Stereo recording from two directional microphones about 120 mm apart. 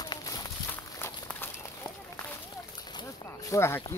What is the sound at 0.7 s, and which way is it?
Walk, 20° left (ahead or behind).